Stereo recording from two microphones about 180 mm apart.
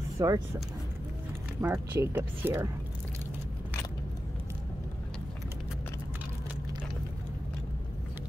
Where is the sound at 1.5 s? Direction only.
15° right (ahead or behind).